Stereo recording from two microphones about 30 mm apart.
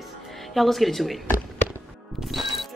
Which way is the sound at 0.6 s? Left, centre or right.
Centre.